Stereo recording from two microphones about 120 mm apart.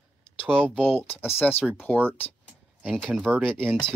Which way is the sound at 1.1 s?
20° left (ahead or behind).